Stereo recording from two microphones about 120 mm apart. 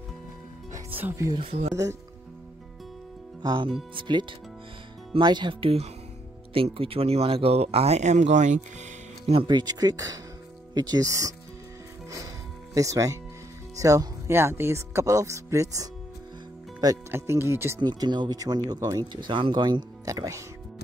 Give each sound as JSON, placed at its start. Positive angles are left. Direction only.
{"t": 1.4, "sound": "speech", "side_deg": -60}
{"t": 3.4, "sound": "speech", "side_deg": -40}
{"t": 9.3, "sound": "speech", "side_deg": -45}
{"t": 12.7, "sound": "speech", "side_deg": -30}
{"t": 17.1, "sound": "speech", "side_deg": -20}
{"t": 17.7, "sound": "speech", "side_deg": -40}